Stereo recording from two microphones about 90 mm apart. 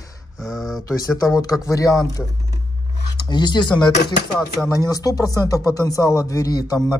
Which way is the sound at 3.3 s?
55° left (ahead or behind).